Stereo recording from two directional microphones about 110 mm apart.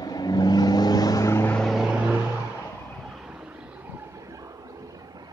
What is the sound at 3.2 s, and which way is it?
Vehicle, 5° right (ahead or behind).